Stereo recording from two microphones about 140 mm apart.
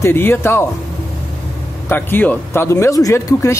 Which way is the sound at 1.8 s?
15° left (ahead or behind).